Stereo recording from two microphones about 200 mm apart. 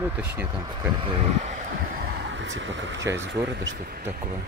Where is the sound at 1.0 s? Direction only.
30° right (ahead or behind); by 3.1 s 65° right (ahead or behind).